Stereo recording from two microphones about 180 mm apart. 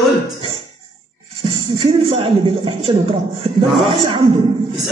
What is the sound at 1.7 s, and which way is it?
Speech, 30° right (ahead or behind).